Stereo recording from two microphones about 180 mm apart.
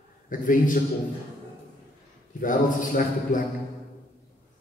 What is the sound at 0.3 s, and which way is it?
Speech, 45° left (ahead or behind).